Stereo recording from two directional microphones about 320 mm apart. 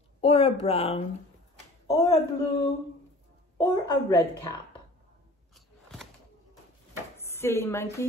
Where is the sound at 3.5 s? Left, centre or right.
Centre.